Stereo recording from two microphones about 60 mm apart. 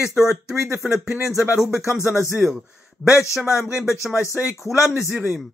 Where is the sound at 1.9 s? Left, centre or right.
Left.